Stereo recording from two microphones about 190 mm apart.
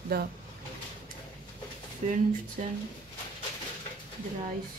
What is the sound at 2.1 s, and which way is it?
Speech, 45° right (ahead or behind).